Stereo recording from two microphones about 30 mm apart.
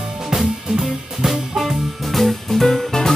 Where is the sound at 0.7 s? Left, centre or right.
Centre.